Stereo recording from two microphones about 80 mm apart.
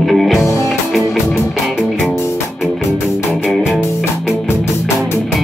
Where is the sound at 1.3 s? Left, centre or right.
Centre.